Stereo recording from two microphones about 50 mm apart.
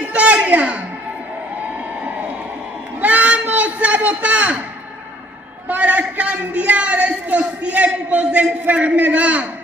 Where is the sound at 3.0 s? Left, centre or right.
Right.